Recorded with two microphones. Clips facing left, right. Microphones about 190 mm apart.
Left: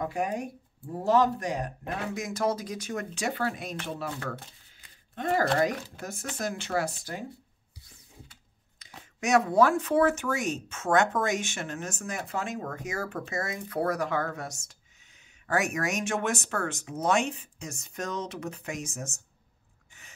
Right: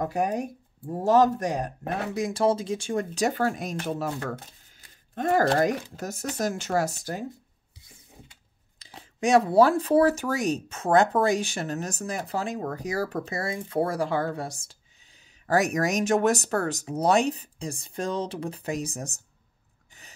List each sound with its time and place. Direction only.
0.0 s speech: 40° right (ahead or behind)
2.1 s speech: 30° right (ahead or behind)
8.7 s speech: 30° right (ahead or behind)